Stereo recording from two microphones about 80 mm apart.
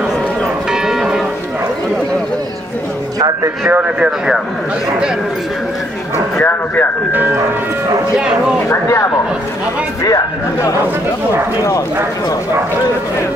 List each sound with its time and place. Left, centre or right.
0.7 s church bell: centre
3.4 s speech: right
6.4 s speech: left
10.0 s speech: left